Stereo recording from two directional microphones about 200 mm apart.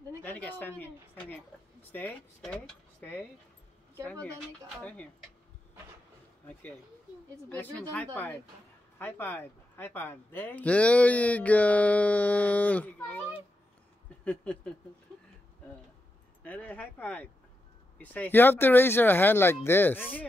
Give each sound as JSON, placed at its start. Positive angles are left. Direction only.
{"t": 0.2, "sound": "a man's voice", "side_deg": 10}
{"t": 7.4, "sound": "a man's voice", "side_deg": 5}
{"t": 14.2, "sound": "a man's voice", "side_deg": 5}
{"t": 16.4, "sound": "a man's voice", "side_deg": 10}